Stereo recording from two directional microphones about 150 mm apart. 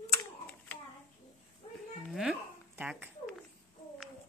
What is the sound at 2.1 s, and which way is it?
Speech, 5° right (ahead or behind).